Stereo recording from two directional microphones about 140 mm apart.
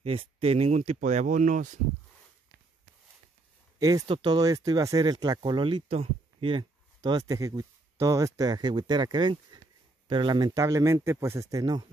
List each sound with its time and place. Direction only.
0.0 s speech: 45° right (ahead or behind); by 1.8 s 65° right (ahead or behind)
4.1 s speech: 30° right (ahead or behind)